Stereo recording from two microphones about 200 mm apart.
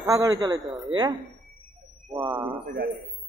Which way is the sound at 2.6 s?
50° right (ahead or behind).